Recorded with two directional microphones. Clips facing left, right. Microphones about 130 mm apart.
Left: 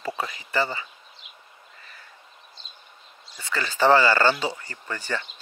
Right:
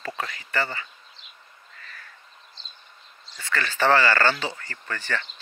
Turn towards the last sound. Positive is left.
turn(degrees=10)  # may be behind; listen again after turning